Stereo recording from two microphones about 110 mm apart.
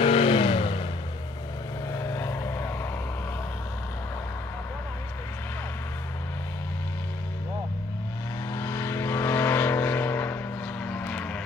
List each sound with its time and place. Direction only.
0.0 s vehicle: 55° left (ahead or behind)
1.9 s vehicle: 25° left (ahead or behind)
8.5 s vehicle: 25° left (ahead or behind)